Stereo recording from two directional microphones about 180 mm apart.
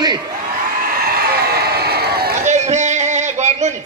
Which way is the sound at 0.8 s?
55° right (ahead or behind).